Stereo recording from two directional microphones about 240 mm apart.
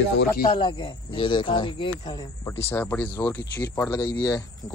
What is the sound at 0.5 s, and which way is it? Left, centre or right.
Speech, centre.